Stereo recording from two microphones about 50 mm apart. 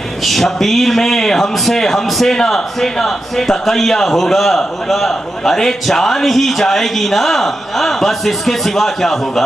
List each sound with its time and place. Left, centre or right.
0.2 s a man's voice: centre